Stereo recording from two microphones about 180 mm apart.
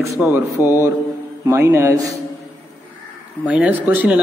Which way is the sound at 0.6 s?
20° left (ahead or behind).